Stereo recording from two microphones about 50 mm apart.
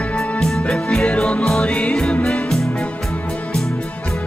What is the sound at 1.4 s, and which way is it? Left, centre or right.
Music, centre.